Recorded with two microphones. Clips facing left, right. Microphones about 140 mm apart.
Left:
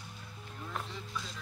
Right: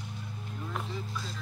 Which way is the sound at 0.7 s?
5° right (ahead or behind).